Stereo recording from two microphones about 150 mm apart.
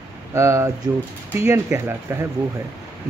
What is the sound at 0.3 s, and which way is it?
Speech, 20° right (ahead or behind).